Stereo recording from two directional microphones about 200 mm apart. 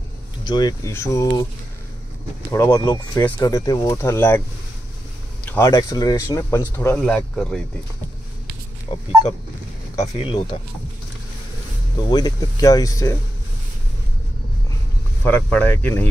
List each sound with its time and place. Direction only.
0.5 s speech: 20° left (ahead or behind)
2.5 s speech: 15° left (ahead or behind)
5.5 s speech: 15° left (ahead or behind)
10.1 s speech: 25° left (ahead or behind)
12.1 s speech: 20° left (ahead or behind)
15.2 s speech: 5° left (ahead or behind)